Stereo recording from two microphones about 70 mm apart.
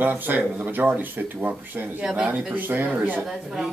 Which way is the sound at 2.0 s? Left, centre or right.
Centre.